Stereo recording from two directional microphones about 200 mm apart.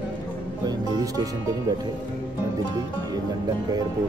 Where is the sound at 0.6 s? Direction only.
20° right (ahead or behind).